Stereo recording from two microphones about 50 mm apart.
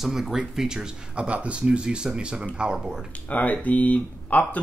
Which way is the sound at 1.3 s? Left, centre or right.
Right.